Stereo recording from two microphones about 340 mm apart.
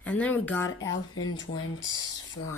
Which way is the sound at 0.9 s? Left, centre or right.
Left.